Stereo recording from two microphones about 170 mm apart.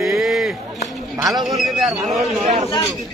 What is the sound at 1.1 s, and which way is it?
Speech, 20° right (ahead or behind).